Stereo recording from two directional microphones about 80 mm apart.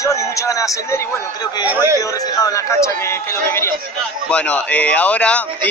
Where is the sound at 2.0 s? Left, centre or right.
Left.